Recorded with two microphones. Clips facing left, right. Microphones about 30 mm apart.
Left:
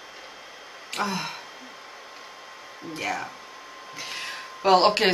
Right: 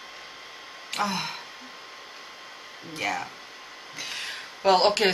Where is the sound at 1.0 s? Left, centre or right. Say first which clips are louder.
Even; centre.